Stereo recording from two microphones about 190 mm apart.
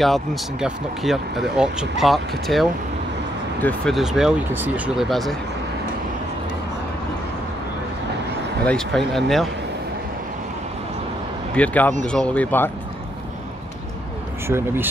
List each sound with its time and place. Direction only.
0.0 s speech: centre (ahead or behind)
8.6 s speech: centre (ahead or behind)
11.5 s speech: 10° left (ahead or behind)
14.5 s speech: 10° right (ahead or behind)